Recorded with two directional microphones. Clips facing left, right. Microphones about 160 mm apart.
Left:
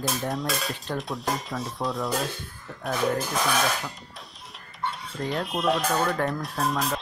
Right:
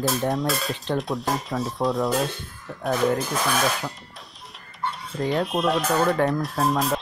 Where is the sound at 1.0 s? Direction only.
Centre (ahead or behind).